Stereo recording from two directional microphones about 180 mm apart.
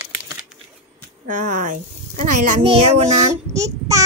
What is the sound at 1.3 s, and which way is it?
Speech, 45° right (ahead or behind).